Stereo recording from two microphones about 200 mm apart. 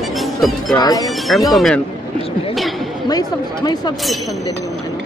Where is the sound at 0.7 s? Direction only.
20° left (ahead or behind).